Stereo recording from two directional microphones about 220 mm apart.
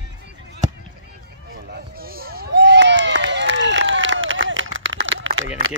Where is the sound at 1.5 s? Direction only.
45° right (ahead or behind).